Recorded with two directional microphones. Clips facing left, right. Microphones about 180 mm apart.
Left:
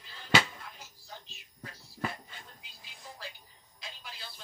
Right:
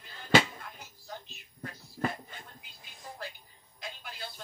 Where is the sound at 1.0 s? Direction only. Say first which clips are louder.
Right 7 dB; 55° right (ahead or behind).